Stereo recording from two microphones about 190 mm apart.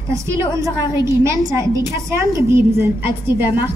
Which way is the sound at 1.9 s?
15° right (ahead or behind).